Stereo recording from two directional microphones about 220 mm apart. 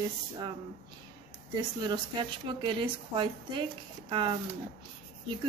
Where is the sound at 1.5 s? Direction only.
20° right (ahead or behind).